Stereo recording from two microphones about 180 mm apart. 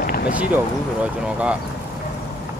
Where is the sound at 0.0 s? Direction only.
50° left (ahead or behind).